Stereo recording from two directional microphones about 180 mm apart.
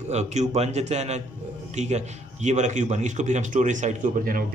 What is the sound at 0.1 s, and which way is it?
A man's voice, 40° right (ahead or behind).